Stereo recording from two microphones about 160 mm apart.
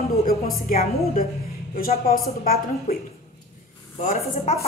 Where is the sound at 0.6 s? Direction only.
65° left (ahead or behind).